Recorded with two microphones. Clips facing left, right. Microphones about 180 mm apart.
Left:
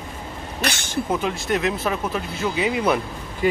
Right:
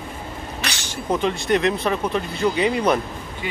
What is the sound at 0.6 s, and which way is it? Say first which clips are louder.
Speech: left 9 dB; 50° left (ahead or behind).